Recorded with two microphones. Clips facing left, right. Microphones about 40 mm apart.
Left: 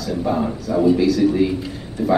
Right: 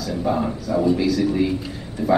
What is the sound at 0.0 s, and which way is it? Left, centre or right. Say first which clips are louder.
A man's voice: left 1 dB; centre.